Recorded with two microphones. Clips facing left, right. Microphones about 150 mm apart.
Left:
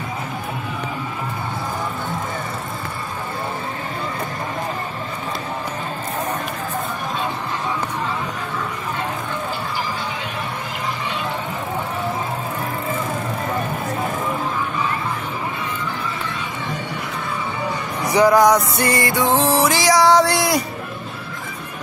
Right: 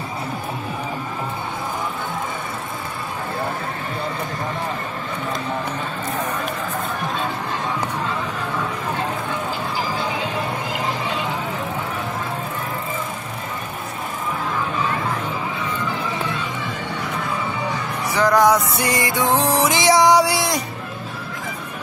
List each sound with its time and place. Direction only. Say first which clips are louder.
18.0 s music: left 5 dB; 15° left (ahead or behind)
18.3 s music: even; centre (ahead or behind)
18.8 s music: left 2 dB; 20° right (ahead or behind)
20.3 s music: left 3 dB; centre (ahead or behind)